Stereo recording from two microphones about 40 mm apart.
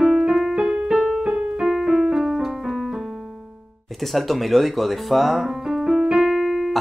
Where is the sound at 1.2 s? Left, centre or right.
Centre.